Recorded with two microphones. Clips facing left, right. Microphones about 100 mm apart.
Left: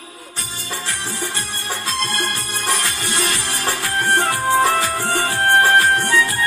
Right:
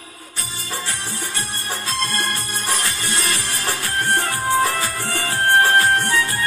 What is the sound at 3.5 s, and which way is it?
Music, 30° left (ahead or behind).